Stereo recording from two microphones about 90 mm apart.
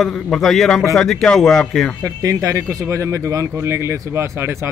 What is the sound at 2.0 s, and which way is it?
A man's voice, 40° right (ahead or behind).